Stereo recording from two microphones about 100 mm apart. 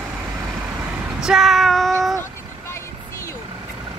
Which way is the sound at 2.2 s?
25° left (ahead or behind).